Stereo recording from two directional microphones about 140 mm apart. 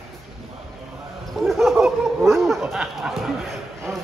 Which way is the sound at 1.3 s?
Centre (ahead or behind).